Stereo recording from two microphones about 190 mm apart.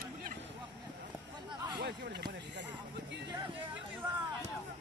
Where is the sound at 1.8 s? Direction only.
60° right (ahead or behind).